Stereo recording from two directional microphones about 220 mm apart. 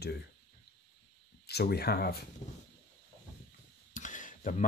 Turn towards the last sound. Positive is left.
turn(degrees=35)  # may be behind; listen again after turning